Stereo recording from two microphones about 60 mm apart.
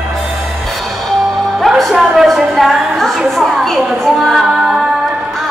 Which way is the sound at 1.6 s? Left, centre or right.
Centre.